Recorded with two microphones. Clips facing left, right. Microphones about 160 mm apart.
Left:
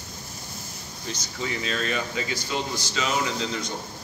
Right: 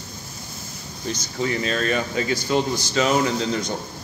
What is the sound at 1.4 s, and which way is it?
Speech, 45° right (ahead or behind).